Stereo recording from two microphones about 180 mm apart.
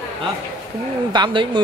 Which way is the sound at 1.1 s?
25° right (ahead or behind).